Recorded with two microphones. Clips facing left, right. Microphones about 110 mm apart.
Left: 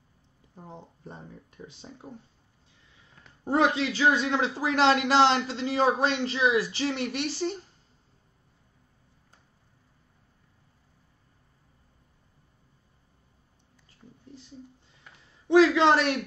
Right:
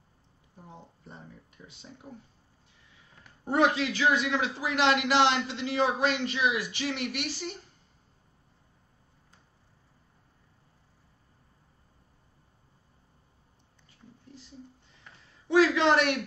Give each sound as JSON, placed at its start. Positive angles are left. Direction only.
{"t": 0.6, "sound": "a sound", "side_deg": 30}
{"t": 1.7, "sound": "a man's voice", "side_deg": 35}
{"t": 3.4, "sound": "a man's voice", "side_deg": 25}
{"t": 15.4, "sound": "a man's voice", "side_deg": 25}